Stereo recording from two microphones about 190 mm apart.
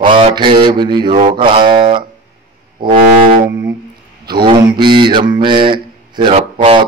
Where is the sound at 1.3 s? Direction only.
25° right (ahead or behind).